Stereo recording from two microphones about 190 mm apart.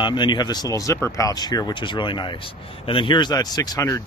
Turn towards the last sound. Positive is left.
turn(degrees=15)  # may be behind; listen again after turning